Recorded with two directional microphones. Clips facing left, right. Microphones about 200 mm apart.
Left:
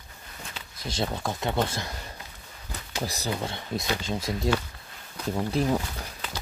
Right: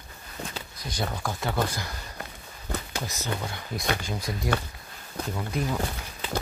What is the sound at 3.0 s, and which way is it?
Speech, 35° left (ahead or behind).